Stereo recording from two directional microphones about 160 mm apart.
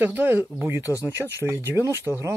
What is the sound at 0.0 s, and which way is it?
Speech, 10° right (ahead or behind).